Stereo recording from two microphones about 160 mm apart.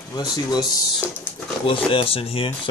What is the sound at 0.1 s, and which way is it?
Speech, 25° left (ahead or behind).